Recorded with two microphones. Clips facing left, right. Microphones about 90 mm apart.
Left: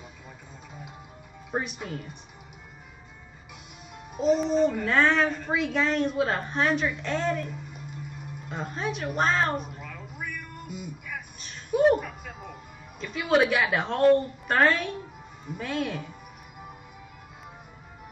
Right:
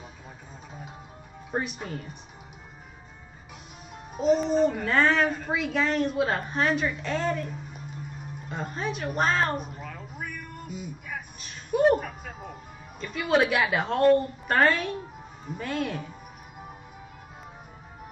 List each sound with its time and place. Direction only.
1.5 s a woman's voice: centre (ahead or behind)
4.2 s a child's voice: centre (ahead or behind)
9.8 s a sound: 40° right (ahead or behind)
11.3 s a sound: centre (ahead or behind)
12.0 s music: 40° right (ahead or behind)
13.0 s a woman's voice: centre (ahead or behind)